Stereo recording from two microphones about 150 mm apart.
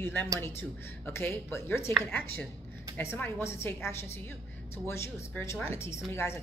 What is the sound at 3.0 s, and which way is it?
A woman's voice, 15° left (ahead or behind).